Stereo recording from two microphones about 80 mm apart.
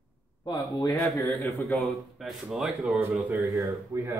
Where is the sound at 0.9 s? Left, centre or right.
Left.